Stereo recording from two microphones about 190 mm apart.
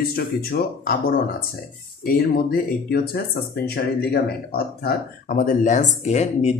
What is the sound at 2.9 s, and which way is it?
Speech, 55° left (ahead or behind).